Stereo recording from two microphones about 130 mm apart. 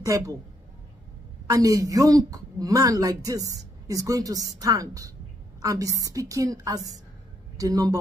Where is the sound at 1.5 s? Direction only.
25° right (ahead or behind).